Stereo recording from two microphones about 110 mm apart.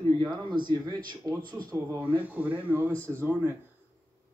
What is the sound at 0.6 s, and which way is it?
Speech, 40° right (ahead or behind).